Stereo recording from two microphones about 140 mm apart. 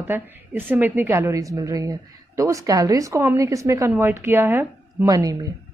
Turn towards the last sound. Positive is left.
turn(degrees=-25)  # may be behind; listen again after turning